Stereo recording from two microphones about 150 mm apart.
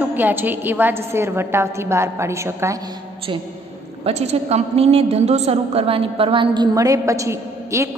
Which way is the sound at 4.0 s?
45° right (ahead or behind).